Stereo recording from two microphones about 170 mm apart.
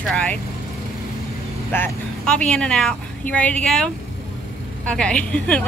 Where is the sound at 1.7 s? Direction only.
10° left (ahead or behind).